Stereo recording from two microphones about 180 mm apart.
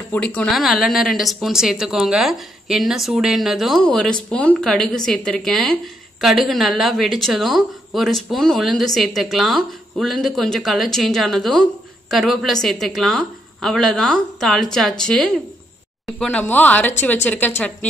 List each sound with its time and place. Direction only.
0.1 s speech: 5° left (ahead or behind)